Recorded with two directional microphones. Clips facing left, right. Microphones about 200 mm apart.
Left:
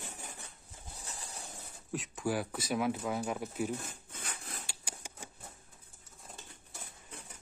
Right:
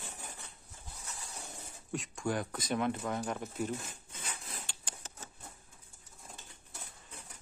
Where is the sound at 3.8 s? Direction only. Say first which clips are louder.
Left 1 dB; 55° left (ahead or behind).